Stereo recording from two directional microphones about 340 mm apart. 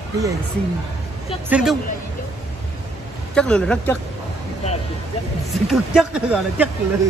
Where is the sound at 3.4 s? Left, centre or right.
Centre.